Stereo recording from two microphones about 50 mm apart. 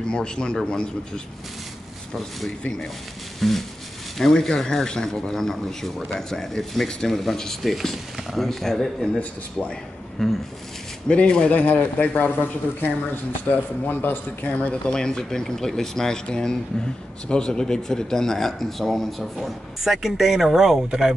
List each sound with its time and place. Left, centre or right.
0.0 s speech: centre
3.3 s a sound: centre
4.2 s speech: centre
9.2 s speech: left
10.2 s speech: centre
11.1 s speech: centre
11.5 s speech: left
14.7 s speech: centre